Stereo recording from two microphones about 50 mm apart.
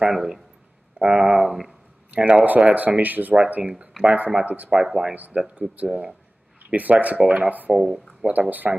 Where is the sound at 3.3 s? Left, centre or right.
Right.